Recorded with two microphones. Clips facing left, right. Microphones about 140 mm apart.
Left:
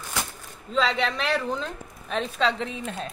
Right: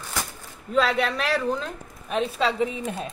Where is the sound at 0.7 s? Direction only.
10° right (ahead or behind).